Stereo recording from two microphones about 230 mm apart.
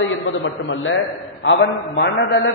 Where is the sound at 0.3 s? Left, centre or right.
Left.